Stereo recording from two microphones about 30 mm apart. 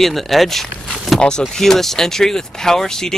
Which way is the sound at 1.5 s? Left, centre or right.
Centre.